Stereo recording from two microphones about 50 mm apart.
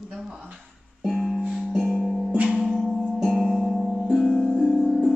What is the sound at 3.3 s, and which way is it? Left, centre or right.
Music, centre.